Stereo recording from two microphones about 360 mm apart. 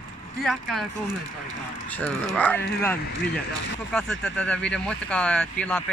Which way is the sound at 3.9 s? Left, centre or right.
Centre.